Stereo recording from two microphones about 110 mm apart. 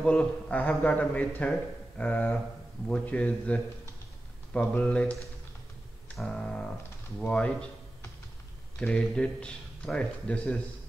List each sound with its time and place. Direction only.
0.0 s a man's voice: 10° left (ahead or behind)
4.6 s a man's voice: 10° left (ahead or behind)
6.1 s a sound: 5° left (ahead or behind)
7.2 s a man's voice: 10° left (ahead or behind)
8.7 s a man's voice: 10° left (ahead or behind)